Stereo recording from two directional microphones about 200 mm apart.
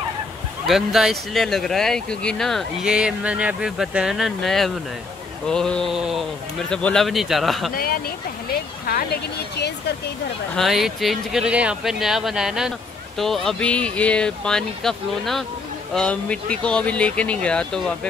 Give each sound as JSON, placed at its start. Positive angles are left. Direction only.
{"t": 0.7, "sound": "speech", "side_deg": 0}
{"t": 7.7, "sound": "speech", "side_deg": 50}
{"t": 10.5, "sound": "speech", "side_deg": 0}